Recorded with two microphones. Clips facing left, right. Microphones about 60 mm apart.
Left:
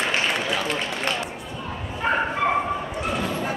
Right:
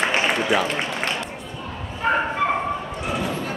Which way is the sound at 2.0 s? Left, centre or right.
Centre.